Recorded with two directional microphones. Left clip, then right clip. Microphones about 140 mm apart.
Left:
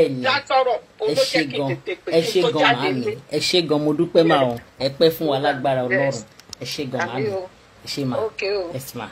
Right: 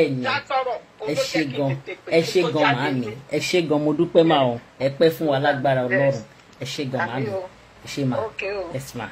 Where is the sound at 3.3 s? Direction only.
Centre (ahead or behind).